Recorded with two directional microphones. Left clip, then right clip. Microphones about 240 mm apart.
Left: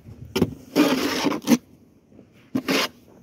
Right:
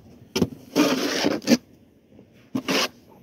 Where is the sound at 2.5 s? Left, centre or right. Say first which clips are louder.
Left 1 dB; centre.